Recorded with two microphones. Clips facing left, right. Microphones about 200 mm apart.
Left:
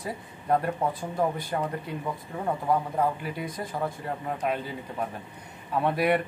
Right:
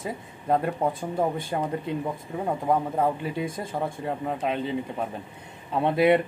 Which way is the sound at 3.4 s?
25° right (ahead or behind).